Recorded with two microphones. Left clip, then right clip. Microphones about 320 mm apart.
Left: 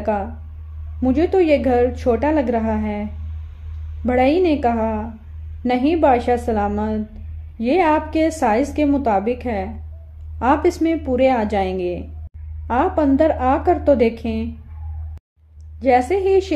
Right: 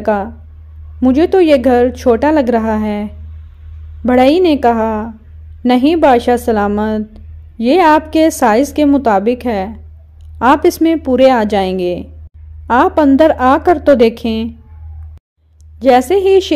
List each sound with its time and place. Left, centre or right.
0.0 s a woman's voice: right
15.8 s a woman's voice: right